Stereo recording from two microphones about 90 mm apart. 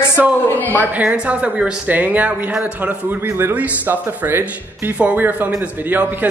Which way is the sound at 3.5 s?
20° right (ahead or behind).